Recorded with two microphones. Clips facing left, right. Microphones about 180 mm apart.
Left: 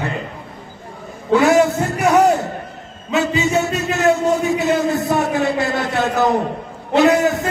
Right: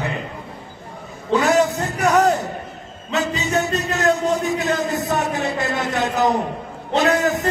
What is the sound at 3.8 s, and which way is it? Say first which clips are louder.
Speech: left 5 dB; 15° left (ahead or behind).